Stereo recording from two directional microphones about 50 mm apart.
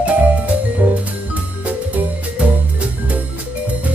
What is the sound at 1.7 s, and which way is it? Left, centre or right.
Music, right.